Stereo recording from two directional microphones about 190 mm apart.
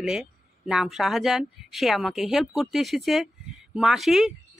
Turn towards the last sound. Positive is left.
turn(degrees=0)  # may be behind; listen again after turning